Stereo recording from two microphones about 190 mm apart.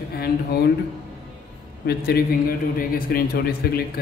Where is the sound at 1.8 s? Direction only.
55° left (ahead or behind).